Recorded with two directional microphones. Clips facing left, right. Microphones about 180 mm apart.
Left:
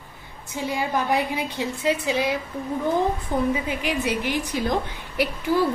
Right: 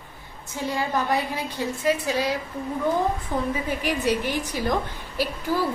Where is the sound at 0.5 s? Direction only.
15° left (ahead or behind).